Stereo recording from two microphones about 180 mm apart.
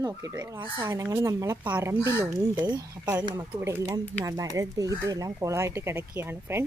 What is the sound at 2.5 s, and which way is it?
Speech, 25° right (ahead or behind).